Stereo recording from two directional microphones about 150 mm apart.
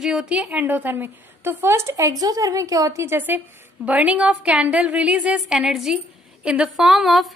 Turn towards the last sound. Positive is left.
turn(degrees=0)  # may be behind; listen again after turning